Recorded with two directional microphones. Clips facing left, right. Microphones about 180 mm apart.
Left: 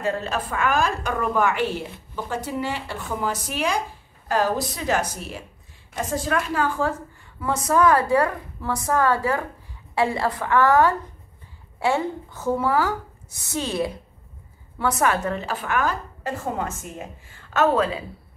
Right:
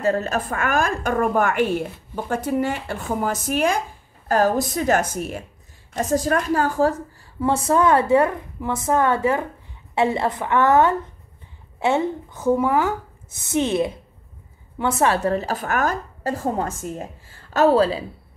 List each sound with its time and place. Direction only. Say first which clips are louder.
0.0 s a woman's voice: right 4 dB; 45° right (ahead or behind)
7.3 s a woman's voice: right 2 dB; 30° right (ahead or behind)